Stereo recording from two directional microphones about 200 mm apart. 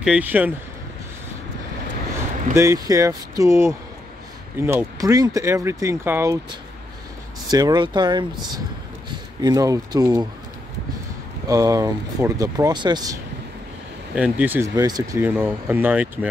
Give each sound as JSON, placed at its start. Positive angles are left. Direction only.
{"t": 0.0, "sound": "speech", "side_deg": -5}
{"t": 2.5, "sound": "speech", "side_deg": -15}
{"t": 7.4, "sound": "speech", "side_deg": -20}
{"t": 11.4, "sound": "speech", "side_deg": -15}
{"t": 14.1, "sound": "speech", "side_deg": -10}